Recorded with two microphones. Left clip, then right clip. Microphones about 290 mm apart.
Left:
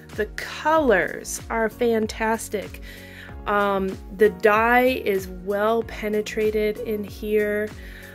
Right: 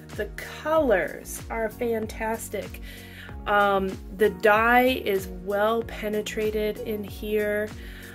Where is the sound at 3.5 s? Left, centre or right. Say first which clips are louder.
Even; centre.